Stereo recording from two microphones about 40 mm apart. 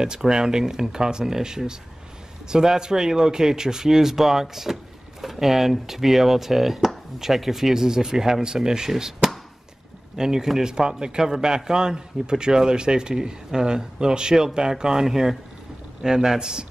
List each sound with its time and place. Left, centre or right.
0.0 s a man's voice: centre